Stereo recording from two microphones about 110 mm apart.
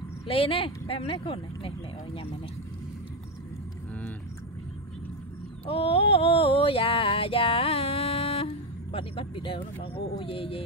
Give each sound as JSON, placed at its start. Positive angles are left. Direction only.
{"t": 0.3, "sound": "speech", "side_deg": 55}
{"t": 5.7, "sound": "female singing", "side_deg": 55}